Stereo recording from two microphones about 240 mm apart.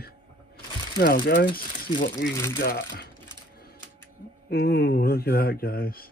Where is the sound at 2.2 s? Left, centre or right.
Left.